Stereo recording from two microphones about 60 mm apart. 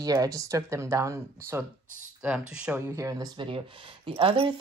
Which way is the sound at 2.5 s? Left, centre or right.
Right.